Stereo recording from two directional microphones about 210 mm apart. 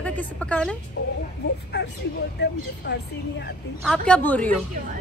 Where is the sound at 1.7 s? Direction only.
50° left (ahead or behind).